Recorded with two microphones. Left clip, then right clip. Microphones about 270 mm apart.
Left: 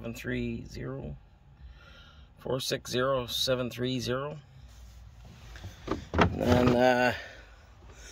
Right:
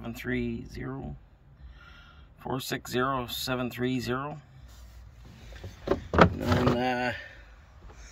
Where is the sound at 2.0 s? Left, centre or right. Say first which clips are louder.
Right 1 dB; centre.